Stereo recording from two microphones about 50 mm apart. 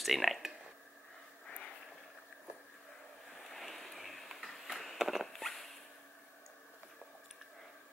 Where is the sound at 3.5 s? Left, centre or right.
Centre.